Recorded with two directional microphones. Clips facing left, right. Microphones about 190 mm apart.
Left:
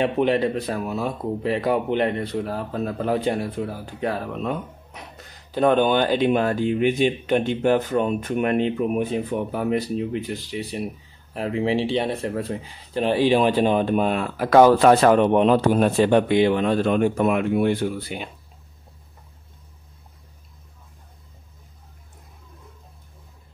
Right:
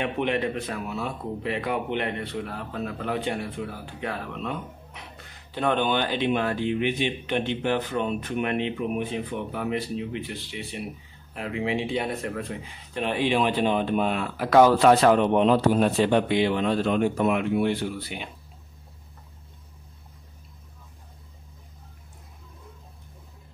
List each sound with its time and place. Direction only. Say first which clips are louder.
0.0 s speech: left 6 dB; 35° left (ahead or behind)